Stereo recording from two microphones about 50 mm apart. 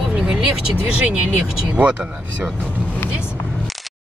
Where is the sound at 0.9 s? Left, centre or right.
Right.